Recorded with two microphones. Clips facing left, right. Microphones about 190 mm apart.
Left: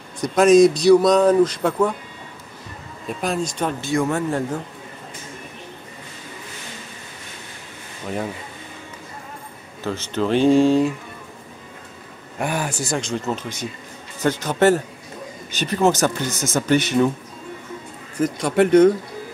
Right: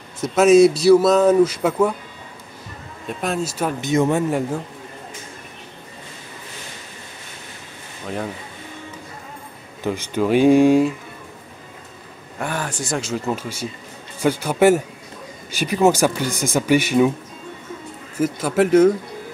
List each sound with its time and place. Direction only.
0.2 s speech: 5° right (ahead or behind)
3.1 s speech: centre (ahead or behind)
3.8 s speech: 20° right (ahead or behind)
9.8 s speech: 10° right (ahead or behind)
12.4 s speech: 10° left (ahead or behind); by 17.1 s 10° right (ahead or behind)
18.1 s speech: 5° right (ahead or behind)